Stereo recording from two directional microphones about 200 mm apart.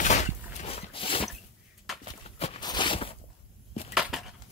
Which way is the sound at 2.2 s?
30° left (ahead or behind).